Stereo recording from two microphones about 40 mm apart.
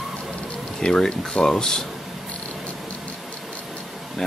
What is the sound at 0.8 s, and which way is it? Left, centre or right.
Speech, left.